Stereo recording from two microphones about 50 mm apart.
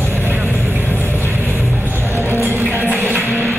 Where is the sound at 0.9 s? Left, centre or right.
Left.